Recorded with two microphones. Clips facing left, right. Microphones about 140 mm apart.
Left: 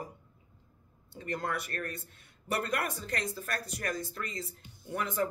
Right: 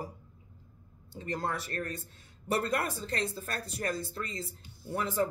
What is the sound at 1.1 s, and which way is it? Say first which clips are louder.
Speech: right 1 dB; 30° right (ahead or behind).